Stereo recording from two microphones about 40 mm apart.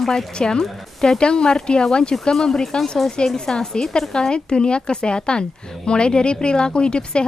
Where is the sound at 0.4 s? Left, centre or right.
Centre.